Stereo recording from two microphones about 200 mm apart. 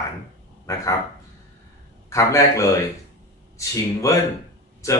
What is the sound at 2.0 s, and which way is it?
Speech, 15° left (ahead or behind).